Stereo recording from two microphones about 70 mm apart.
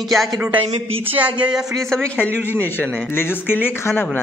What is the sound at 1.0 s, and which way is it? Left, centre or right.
Speech, right.